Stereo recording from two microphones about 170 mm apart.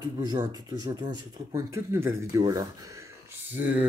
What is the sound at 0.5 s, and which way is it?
Speech, 25° right (ahead or behind).